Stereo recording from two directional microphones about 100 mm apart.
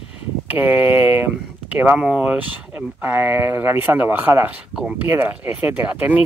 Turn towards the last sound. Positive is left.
turn(degrees=-15)  # may be behind; listen again after turning